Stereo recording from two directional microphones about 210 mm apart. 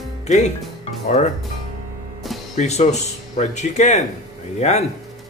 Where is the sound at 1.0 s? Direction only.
35° left (ahead or behind).